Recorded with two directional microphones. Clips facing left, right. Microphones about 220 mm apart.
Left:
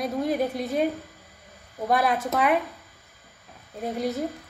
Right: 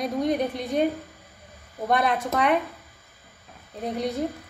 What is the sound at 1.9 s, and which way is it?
Speech, centre (ahead or behind).